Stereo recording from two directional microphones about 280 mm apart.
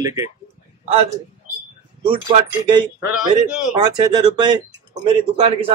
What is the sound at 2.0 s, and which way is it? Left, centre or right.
Speech, centre.